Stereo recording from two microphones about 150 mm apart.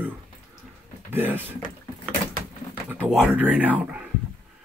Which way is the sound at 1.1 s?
15° right (ahead or behind).